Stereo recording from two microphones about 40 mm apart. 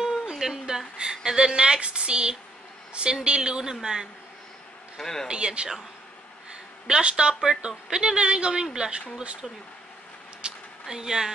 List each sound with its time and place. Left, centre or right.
0.0 s a sound: centre
1.1 s a man's voice: centre
4.9 s speech: centre
5.3 s speech: right
6.9 s speech: right
10.4 s a sound: centre